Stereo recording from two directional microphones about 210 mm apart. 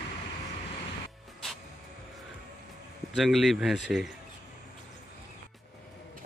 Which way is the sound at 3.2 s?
Centre (ahead or behind).